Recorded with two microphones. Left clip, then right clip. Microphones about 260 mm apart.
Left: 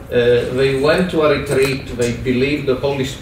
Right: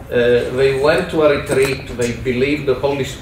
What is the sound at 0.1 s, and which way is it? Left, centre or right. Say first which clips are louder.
A man's voice: even; centre.